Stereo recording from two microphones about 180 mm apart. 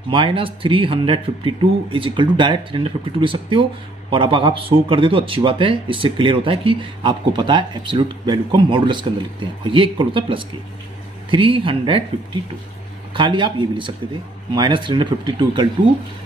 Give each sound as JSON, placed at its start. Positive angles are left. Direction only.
{"t": 0.1, "sound": "speech", "side_deg": -30}
{"t": 13.1, "sound": "speech", "side_deg": -25}